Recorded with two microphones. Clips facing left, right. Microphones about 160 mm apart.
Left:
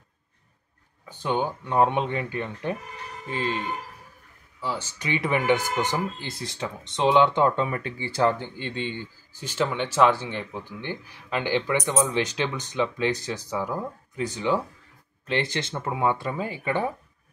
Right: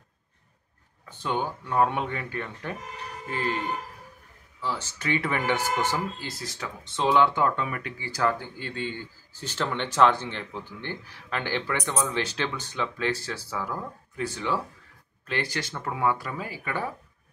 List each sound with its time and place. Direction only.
1.0 s speech: 20° left (ahead or behind)
4.6 s speech: 10° left (ahead or behind)